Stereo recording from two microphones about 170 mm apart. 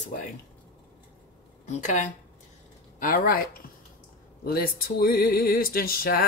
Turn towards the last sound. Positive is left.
turn(degrees=60)  # may be behind; listen again after turning